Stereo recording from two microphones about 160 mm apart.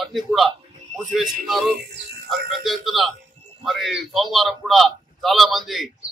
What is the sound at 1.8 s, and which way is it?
Speech, 90° right.